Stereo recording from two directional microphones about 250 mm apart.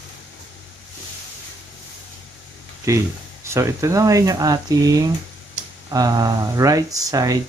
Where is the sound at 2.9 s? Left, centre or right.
Centre.